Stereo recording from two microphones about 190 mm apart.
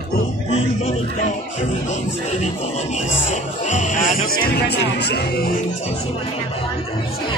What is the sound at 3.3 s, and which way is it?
Music, 40° left (ahead or behind).